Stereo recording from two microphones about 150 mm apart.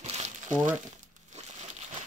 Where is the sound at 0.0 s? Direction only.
50° right (ahead or behind).